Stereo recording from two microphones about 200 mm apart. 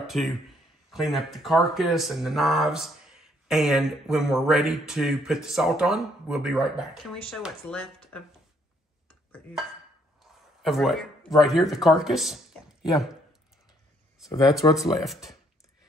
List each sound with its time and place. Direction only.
0.0 s a man's voice: centre (ahead or behind)
10.2 s a sound: centre (ahead or behind)
11.7 s speech: centre (ahead or behind)
14.6 s speech: 20° left (ahead or behind)
15.0 s speech: centre (ahead or behind)